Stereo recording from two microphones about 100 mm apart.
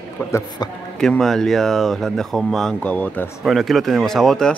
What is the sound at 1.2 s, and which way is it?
Speech, 5° left (ahead or behind).